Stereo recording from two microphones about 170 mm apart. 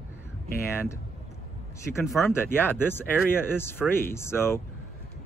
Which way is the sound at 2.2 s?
15° left (ahead or behind).